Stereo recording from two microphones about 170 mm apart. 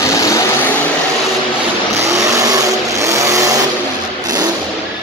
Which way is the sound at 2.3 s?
20° right (ahead or behind).